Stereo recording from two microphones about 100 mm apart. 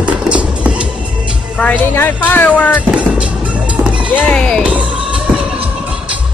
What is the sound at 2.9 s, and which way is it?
Music, 10° right (ahead or behind).